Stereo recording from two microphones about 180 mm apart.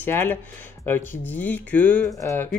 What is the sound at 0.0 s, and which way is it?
Speech, 10° left (ahead or behind).